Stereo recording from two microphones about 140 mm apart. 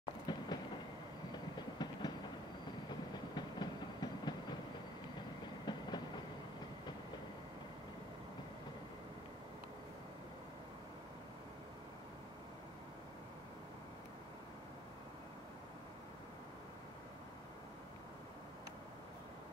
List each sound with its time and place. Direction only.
0.3 s train: 30° left (ahead or behind)
5.7 s train: 30° left (ahead or behind)